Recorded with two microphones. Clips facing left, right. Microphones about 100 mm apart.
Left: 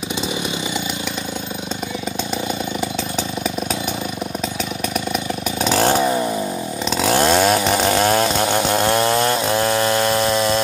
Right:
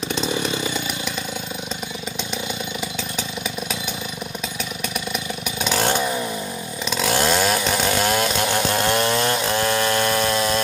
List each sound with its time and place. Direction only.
0.1 s chainsaw: 15° left (ahead or behind)
5.6 s chainsaw: 40° left (ahead or behind); by 10.6 s 25° left (ahead or behind)